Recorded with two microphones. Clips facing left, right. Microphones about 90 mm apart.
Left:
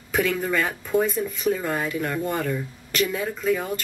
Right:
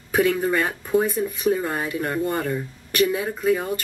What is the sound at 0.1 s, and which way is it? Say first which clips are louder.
Speech: right 3 dB; 10° right (ahead or behind).